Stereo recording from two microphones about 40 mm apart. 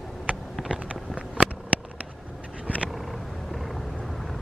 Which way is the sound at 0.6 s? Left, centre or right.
Right.